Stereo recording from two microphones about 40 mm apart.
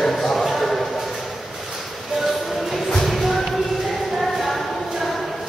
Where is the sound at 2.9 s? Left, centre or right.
Centre.